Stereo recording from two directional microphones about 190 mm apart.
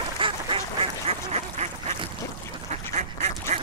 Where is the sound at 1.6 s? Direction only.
35° right (ahead or behind).